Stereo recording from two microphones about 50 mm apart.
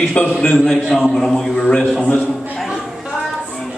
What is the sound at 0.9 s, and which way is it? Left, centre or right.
Speech, centre.